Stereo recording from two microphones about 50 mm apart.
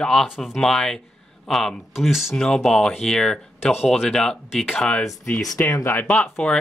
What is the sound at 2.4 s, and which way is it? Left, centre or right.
Speech, centre.